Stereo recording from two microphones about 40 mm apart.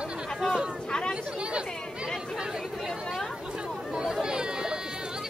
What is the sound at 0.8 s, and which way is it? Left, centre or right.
Chatter, left.